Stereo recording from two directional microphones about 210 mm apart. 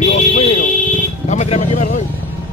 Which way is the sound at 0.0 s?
30° left (ahead or behind).